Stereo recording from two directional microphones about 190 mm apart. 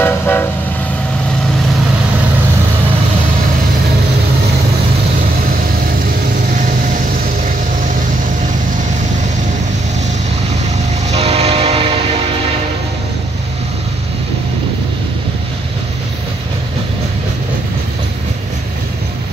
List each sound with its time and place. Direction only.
0.0 s toot: 10° left (ahead or behind)
11.1 s train: 30° right (ahead or behind)